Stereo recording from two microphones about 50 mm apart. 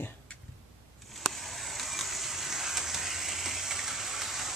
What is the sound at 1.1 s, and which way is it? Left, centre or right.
Vehicle, centre.